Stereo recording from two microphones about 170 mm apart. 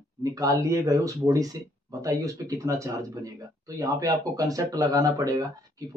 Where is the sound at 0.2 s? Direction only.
20° right (ahead or behind).